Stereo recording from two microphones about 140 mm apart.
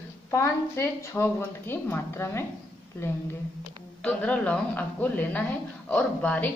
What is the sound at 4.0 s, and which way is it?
Speech, 10° left (ahead or behind).